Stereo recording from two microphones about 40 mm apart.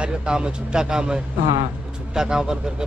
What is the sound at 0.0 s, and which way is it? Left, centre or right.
Speech, right.